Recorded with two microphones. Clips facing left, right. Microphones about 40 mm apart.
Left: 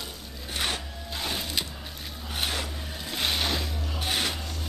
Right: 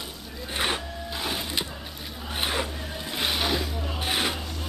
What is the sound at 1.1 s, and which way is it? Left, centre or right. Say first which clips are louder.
Music: right 1 dB; centre.